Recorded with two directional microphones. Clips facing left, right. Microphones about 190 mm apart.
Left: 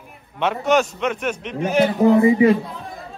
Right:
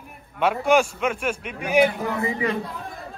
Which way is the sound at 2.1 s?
20° left (ahead or behind).